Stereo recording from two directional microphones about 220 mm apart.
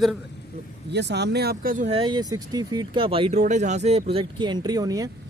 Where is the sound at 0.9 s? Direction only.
50° right (ahead or behind); by 5.1 s 15° right (ahead or behind).